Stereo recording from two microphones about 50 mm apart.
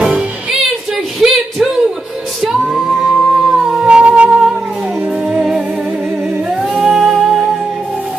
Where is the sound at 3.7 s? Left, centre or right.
Centre.